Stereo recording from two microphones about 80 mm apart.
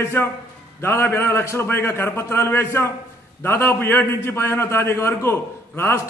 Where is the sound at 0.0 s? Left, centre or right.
Left.